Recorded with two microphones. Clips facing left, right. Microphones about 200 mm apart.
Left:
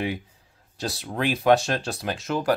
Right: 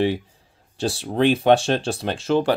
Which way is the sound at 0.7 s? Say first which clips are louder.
Right 7 dB; 30° right (ahead or behind).